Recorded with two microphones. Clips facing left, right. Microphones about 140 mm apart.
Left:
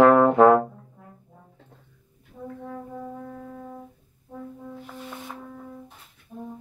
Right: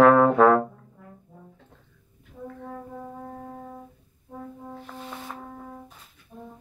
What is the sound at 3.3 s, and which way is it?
Music, 40° right (ahead or behind).